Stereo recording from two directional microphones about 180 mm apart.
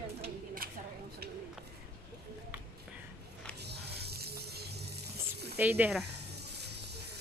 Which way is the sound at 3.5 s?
65° right (ahead or behind).